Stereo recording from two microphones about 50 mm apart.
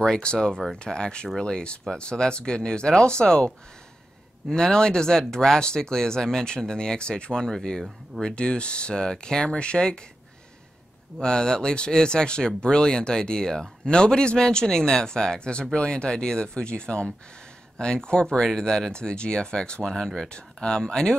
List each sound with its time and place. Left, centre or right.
0.0 s speech: centre
11.1 s speech: centre